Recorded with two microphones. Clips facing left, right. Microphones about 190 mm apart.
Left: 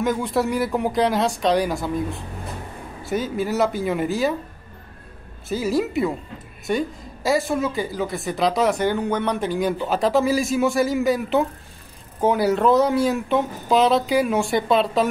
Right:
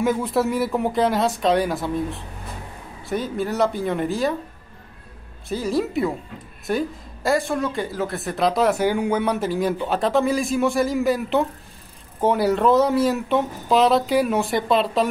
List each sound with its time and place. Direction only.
0.0 s speech: 5° right (ahead or behind)
5.5 s speech: centre (ahead or behind)